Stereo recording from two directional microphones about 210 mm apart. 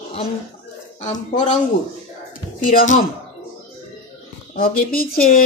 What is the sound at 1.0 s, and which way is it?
Speech, 30° left (ahead or behind).